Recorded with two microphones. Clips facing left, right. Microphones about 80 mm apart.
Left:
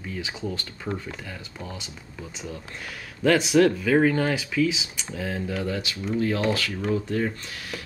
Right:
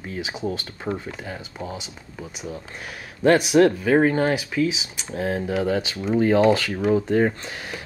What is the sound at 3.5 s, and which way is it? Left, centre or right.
Speech, right.